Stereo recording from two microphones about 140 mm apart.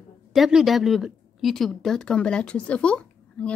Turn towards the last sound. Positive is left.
turn(degrees=10)  # may be behind; listen again after turning